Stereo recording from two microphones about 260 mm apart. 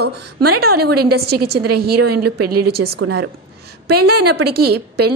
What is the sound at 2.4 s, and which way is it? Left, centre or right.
Speech, right.